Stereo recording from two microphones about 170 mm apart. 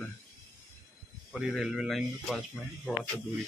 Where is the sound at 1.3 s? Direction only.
Centre (ahead or behind).